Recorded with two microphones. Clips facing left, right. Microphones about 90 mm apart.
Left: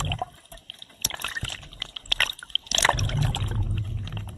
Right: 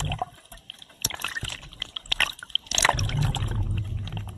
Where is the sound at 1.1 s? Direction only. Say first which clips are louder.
Even; 45° left (ahead or behind).